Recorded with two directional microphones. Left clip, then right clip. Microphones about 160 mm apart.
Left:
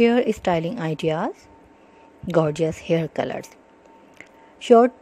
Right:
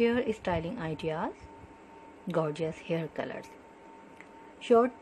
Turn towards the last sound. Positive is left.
turn(degrees=45)  # may be behind; listen again after turning